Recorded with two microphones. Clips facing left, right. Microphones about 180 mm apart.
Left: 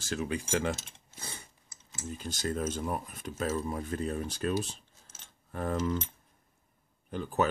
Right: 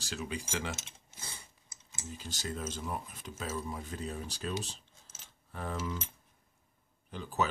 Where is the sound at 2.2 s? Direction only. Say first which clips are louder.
Left 7 dB; 55° left (ahead or behind).